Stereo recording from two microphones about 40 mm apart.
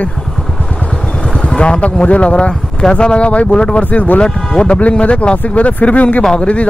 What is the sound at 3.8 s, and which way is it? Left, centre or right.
Speech, left.